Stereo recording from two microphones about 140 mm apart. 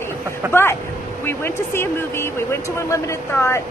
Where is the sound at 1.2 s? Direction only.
15° left (ahead or behind).